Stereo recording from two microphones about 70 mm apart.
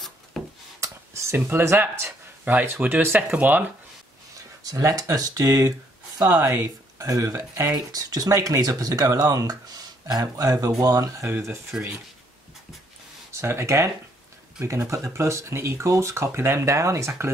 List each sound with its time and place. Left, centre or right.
0.3 s a sound: centre
0.7 s a sound: right
2.4 s speech: right
4.6 s speech: right
6.4 s speech: right
7.0 s speech: right
7.7 s speech: right
11.2 s speech: right
13.3 s speech: right